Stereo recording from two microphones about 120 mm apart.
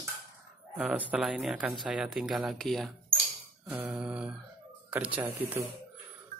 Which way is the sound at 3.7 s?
10° right (ahead or behind).